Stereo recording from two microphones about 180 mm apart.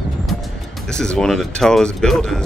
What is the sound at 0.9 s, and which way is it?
Speech, 5° left (ahead or behind).